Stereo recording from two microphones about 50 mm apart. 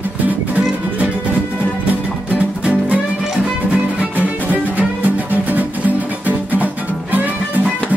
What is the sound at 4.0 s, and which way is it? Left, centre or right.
Music, right.